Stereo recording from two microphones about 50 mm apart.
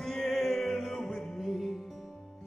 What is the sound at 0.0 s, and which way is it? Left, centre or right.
Music, centre.